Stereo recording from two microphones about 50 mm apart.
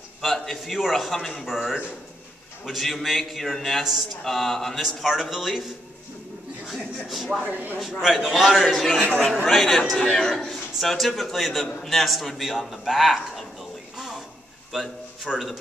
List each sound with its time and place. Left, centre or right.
0.2 s a man's voice: centre
4.8 s a man's voice: centre
6.7 s a man's voice: centre
7.4 s speech: right
8.0 s a man's voice: centre
8.5 s a man's voice: centre
9.0 s speech: left
9.3 s a man's voice: centre
9.6 s a man's voice: centre
13.9 s a sound: centre
14.7 s a man's voice: centre
15.3 s a man's voice: centre